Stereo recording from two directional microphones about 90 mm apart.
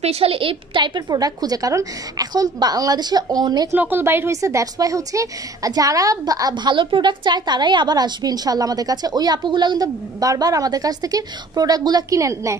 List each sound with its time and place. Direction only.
0.2 s a woman's voice: 85° right; by 3.7 s 50° right (ahead or behind)
3.7 s a woman's voice: 20° right (ahead or behind); by 9.8 s 60° right (ahead or behind)
10.2 s a woman's voice: 40° right (ahead or behind)